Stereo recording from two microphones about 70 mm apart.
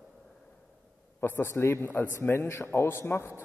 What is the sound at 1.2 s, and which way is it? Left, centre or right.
A man's voice, left.